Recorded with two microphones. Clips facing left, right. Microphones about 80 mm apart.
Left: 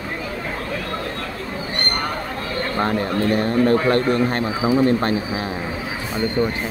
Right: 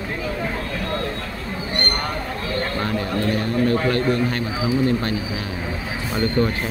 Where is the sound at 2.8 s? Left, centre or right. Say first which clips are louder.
Left 7 dB; left.